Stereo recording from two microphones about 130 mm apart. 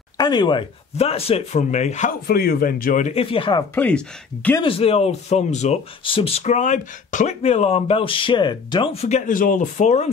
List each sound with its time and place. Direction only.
0.2 s speech: 35° left (ahead or behind); by 2.1 s 65° left (ahead or behind)
2.6 s speech: 90° left
3.1 s speech: 45° left (ahead or behind)
3.7 s speech: 10° left (ahead or behind)
4.6 s speech: 50° left (ahead or behind)
6.0 s speech: 45° left (ahead or behind)
8.9 s speech: 55° left (ahead or behind)
9.2 s speech: 90° left; by 10.0 s 65° left (ahead or behind)